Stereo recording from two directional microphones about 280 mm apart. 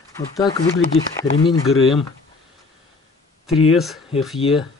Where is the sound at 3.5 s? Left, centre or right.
Left.